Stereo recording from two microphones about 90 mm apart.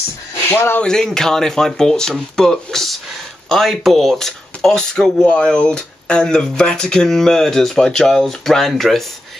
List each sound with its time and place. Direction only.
0.5 s speech: 25° left (ahead or behind)
0.8 s speech: 5° left (ahead or behind)